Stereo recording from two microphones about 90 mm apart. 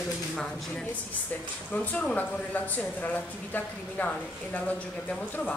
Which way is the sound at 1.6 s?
15° left (ahead or behind).